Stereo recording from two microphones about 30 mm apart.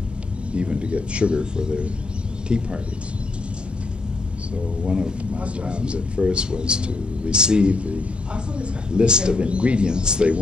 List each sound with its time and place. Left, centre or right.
0.5 s speech: right
4.8 s speech: right
5.4 s speech: right
7.7 s a man's voice: right
8.5 s speech: right